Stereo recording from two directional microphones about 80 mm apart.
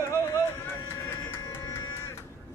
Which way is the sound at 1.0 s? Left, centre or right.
Left.